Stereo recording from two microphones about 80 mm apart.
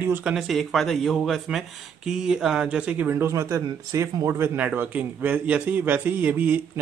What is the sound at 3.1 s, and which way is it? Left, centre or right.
Speech, right.